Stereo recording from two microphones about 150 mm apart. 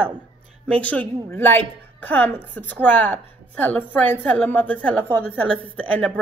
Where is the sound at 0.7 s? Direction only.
10° left (ahead or behind).